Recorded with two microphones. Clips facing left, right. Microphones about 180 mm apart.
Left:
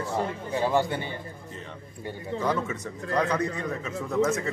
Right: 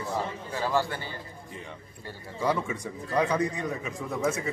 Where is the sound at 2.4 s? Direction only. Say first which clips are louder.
Right 1 dB; 10° right (ahead or behind).